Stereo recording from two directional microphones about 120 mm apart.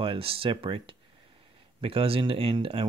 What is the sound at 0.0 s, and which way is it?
Speech, 50° right (ahead or behind).